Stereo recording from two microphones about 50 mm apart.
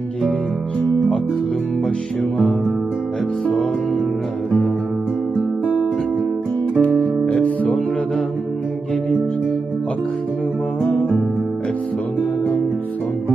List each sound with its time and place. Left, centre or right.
6.8 s music: left